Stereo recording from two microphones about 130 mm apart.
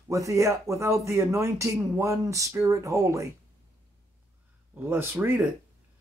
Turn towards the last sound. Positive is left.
turn(degrees=-15)  # may be behind; listen again after turning